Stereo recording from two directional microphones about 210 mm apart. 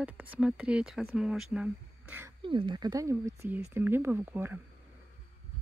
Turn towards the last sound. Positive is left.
turn(degrees=-10)  # may be behind; listen again after turning